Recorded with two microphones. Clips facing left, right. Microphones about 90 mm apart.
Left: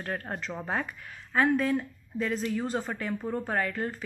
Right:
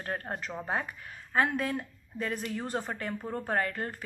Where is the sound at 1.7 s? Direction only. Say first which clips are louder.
Left 6 dB; 45° right (ahead or behind).